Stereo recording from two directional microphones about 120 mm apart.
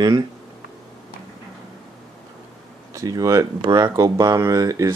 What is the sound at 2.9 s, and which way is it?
Speech, 30° right (ahead or behind).